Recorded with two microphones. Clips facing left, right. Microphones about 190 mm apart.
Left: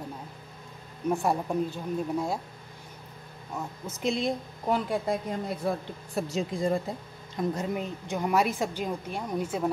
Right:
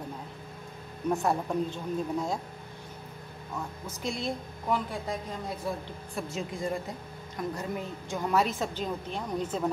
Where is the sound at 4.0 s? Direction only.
20° left (ahead or behind).